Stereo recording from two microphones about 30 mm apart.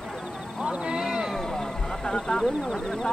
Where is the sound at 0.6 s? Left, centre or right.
Right.